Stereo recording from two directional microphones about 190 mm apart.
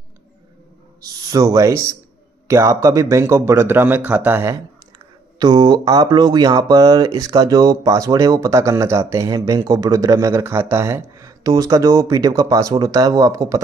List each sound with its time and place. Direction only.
1.0 s speech: 20° right (ahead or behind)
5.4 s speech: 25° right (ahead or behind)